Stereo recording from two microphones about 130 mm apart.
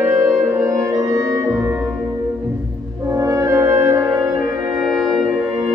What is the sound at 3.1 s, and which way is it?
Music, 25° right (ahead or behind).